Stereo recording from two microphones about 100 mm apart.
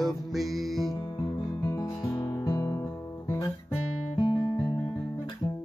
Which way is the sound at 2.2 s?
35° left (ahead or behind).